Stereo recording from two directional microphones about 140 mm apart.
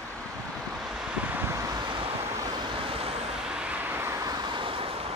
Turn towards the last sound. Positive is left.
turn(degrees=-35)  # may be behind; listen again after turning